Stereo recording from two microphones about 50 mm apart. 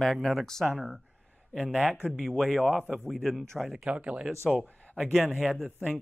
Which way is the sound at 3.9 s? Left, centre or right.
Right.